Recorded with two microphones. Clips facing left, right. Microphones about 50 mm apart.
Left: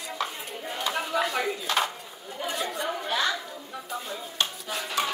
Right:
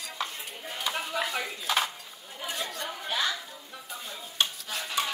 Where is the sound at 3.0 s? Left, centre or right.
Centre.